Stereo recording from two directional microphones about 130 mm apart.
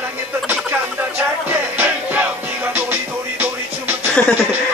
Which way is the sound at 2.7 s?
15° right (ahead or behind).